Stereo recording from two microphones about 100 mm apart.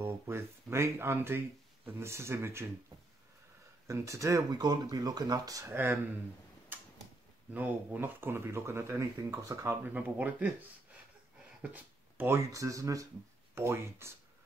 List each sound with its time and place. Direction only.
0.0 s speech: 25° right (ahead or behind)
3.8 s speech: 30° right (ahead or behind)
7.5 s speech: 15° right (ahead or behind); by 9.8 s 30° right (ahead or behind)
9.8 s speech: 15° right (ahead or behind)
11.6 s a sound: 15° right (ahead or behind)
12.4 s speech: 35° right (ahead or behind)